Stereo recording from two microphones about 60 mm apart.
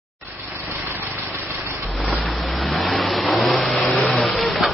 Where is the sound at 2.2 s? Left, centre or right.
Centre.